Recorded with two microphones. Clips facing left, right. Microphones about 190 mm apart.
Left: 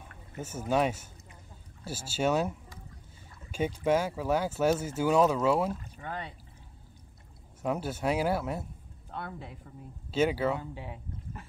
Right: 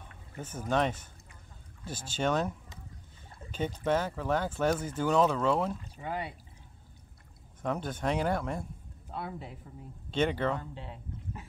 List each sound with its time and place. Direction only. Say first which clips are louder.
0.4 s speech: left 2 dB; 10° left (ahead or behind)
3.5 s speech: left 2 dB; 10° left (ahead or behind)
5.9 s speech: right 3 dB; 10° right (ahead or behind)
7.6 s speech: left 2 dB; 10° left (ahead or behind)